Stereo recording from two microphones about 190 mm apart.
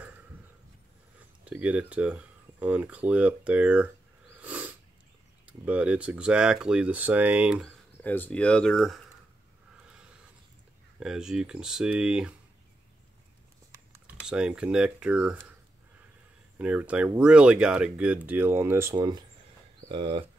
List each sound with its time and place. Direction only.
1.4 s speech: 5° right (ahead or behind)
4.4 s cat: 10° right (ahead or behind)
5.5 s speech: 5° right (ahead or behind)
9.8 s a sound: 5° right (ahead or behind)
11.0 s speech: 5° right (ahead or behind)
13.7 s typing: 15° right (ahead or behind)
14.2 s speech: 5° right (ahead or behind)
16.5 s speech: 5° right (ahead or behind); by 20.2 s 25° right (ahead or behind)